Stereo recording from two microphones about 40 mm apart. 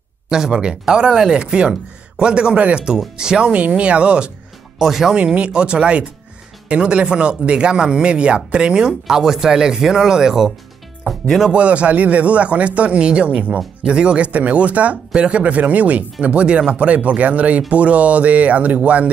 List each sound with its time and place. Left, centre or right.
0.3 s speech: centre
4.7 s speech: centre
5.1 s speech: right
11.5 s speech: right
13.8 s speech: right